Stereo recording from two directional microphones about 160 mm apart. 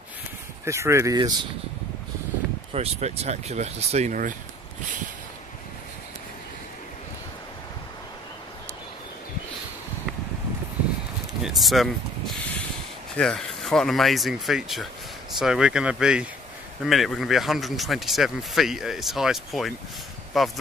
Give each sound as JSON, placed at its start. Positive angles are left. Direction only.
{"t": 0.7, "sound": "speech", "side_deg": -15}
{"t": 2.7, "sound": "speech", "side_deg": -40}
{"t": 11.4, "sound": "speech", "side_deg": 0}